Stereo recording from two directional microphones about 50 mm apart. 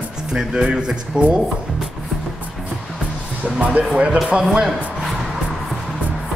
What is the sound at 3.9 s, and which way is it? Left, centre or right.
Speech, right.